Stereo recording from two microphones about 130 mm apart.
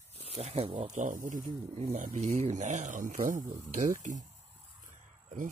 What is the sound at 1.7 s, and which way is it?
Speech, 60° right (ahead or behind).